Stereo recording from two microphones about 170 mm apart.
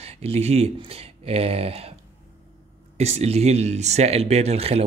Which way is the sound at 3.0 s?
40° right (ahead or behind).